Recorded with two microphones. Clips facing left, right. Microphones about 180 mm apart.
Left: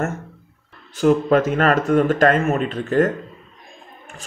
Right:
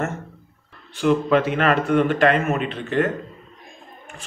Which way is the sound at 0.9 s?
45° left (ahead or behind).